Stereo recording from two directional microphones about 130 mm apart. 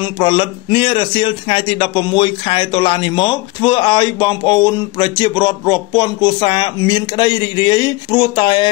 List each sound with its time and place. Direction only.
0.0 s speech: 40° left (ahead or behind)